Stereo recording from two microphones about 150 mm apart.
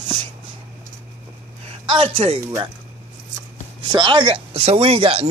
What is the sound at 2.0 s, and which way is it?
Speech, 40° right (ahead or behind).